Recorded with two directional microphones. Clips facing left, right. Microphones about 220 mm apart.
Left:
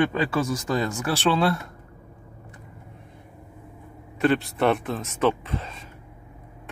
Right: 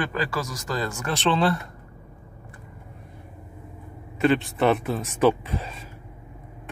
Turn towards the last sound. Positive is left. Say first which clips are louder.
# even
turn(degrees=-10)  # may be behind; listen again after turning